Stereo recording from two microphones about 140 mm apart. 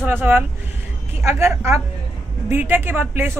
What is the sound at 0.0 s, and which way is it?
A woman's voice, 15° right (ahead or behind).